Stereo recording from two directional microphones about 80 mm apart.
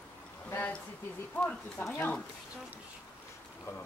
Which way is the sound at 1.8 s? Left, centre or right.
Left.